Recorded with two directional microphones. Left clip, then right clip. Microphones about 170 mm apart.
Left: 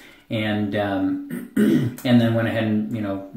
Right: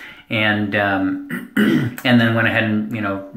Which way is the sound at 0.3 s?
25° left (ahead or behind).